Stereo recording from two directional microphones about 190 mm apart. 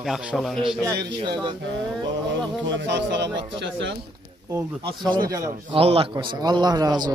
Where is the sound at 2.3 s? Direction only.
75° right (ahead or behind).